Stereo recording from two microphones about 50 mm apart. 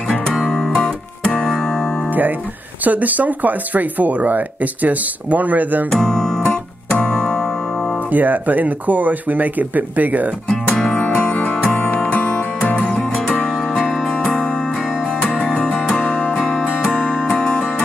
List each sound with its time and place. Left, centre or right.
0.5 s music: centre
2.8 s speech: right
5.9 s music: centre
8.1 s speech: right
11.1 s music: left; by 16.0 s centre
16.0 s music: left